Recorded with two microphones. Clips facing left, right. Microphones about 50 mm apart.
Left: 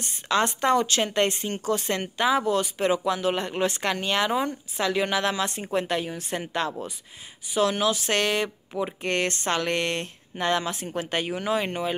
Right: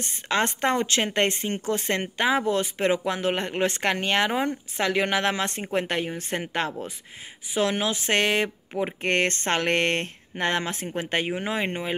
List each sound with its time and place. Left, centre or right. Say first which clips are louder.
0.0 s speech: left 1 dB; right